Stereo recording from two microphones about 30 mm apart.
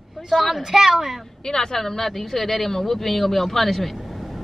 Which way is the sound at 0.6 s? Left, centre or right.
Centre.